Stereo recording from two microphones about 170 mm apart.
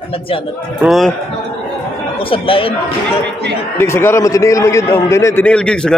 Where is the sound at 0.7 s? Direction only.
Centre (ahead or behind).